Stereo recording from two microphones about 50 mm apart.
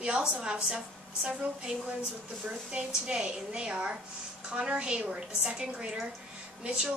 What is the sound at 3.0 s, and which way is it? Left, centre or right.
A woman's voice, centre.